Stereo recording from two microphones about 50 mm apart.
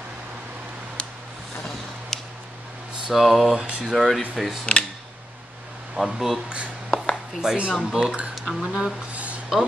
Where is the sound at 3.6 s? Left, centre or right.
Right.